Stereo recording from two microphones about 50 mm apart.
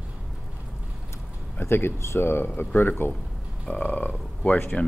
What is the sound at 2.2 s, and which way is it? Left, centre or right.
Speech, left.